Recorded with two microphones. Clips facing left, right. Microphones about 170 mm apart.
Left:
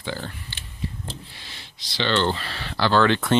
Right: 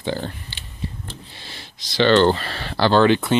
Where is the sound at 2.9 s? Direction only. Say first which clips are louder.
Right 4 dB; 15° right (ahead or behind).